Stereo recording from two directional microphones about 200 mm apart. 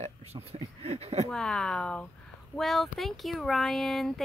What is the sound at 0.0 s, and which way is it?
Speech, 30° right (ahead or behind).